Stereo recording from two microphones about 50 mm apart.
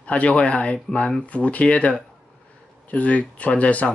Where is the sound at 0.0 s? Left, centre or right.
Left.